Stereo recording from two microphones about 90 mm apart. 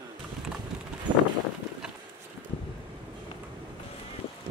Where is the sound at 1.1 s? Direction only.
65° right (ahead or behind).